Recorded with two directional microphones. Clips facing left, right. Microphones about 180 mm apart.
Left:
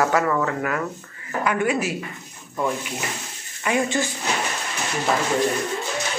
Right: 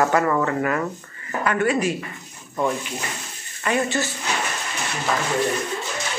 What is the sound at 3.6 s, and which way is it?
Speech, 15° left (ahead or behind).